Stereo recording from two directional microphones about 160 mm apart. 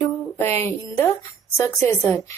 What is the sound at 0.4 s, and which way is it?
Speech, 15° left (ahead or behind).